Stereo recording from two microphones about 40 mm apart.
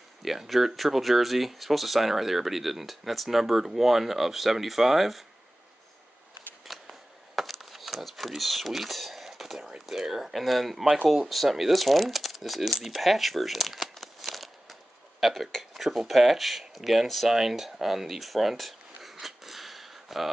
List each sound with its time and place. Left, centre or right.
0.2 s speech: centre
6.7 s a sound: centre
9.8 s speech: centre